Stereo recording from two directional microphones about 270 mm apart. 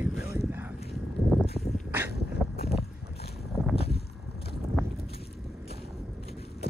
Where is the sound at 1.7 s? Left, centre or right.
Centre.